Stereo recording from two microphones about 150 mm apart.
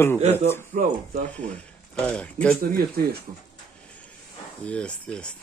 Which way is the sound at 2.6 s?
80° right.